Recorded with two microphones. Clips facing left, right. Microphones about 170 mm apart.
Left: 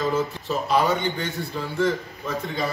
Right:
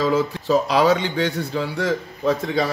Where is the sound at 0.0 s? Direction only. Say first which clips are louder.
Right 4 dB; 75° right (ahead or behind).